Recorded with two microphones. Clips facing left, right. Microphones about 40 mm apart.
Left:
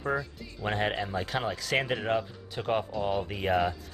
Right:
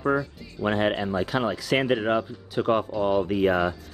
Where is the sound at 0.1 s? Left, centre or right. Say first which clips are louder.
Right 6 dB; centre.